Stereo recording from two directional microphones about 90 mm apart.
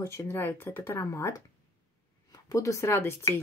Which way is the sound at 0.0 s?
30° left (ahead or behind).